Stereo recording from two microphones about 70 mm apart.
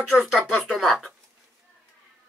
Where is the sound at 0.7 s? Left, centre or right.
Centre.